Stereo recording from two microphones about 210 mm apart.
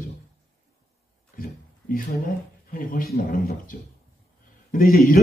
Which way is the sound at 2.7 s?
40° left (ahead or behind).